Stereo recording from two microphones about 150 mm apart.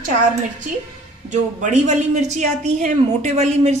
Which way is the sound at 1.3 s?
55° right (ahead or behind).